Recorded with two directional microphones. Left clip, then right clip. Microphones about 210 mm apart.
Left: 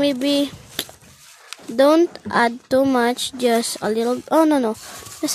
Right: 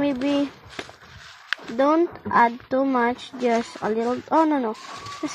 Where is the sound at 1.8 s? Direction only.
50° left (ahead or behind).